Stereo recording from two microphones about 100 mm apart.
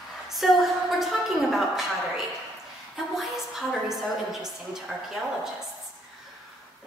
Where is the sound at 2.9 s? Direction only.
Centre (ahead or behind).